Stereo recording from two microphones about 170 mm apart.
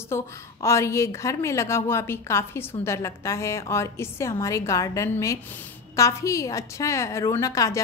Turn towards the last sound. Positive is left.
turn(degrees=20)  # may be behind; listen again after turning